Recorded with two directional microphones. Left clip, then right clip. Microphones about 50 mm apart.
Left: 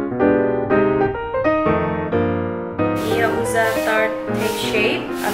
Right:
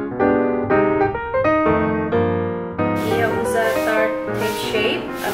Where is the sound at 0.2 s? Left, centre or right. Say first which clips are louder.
Left 1 dB; centre.